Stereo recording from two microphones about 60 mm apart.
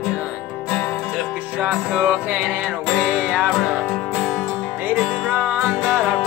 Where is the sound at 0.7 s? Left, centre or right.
Left.